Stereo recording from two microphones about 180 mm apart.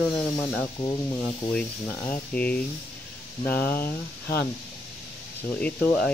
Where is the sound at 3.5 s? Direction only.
55° left (ahead or behind).